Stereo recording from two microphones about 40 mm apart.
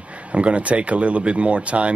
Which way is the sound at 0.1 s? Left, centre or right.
Right.